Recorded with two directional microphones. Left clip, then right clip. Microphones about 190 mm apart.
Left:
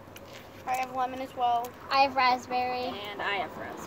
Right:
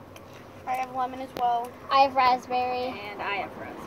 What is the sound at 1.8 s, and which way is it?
A child's voice, 20° right (ahead or behind).